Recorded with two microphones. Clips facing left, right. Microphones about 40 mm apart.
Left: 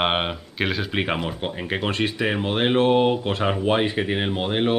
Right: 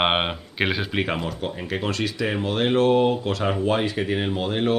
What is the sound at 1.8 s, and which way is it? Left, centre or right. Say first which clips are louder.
Speech: left 2 dB; left.